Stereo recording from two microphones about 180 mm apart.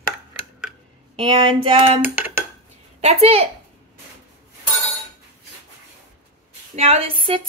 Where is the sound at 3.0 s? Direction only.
35° right (ahead or behind).